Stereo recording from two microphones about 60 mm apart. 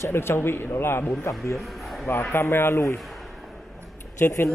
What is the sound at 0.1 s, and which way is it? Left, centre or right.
Speech, left.